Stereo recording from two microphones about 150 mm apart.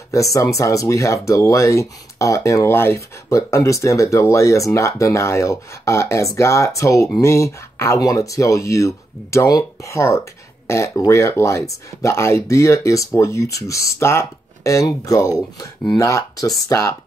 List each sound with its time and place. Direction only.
0.1 s speech: 20° left (ahead or behind)